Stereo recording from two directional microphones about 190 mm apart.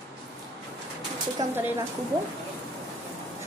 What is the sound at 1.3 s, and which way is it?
Speech, 10° right (ahead or behind).